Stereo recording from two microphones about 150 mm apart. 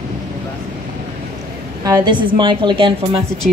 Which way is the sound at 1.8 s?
25° right (ahead or behind).